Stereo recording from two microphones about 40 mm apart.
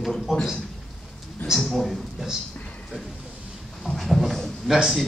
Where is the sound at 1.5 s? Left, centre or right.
Centre.